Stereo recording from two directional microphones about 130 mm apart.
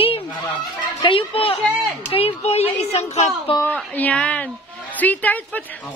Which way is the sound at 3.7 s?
10° left (ahead or behind).